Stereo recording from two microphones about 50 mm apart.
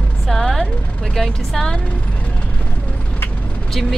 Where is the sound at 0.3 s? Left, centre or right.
Centre.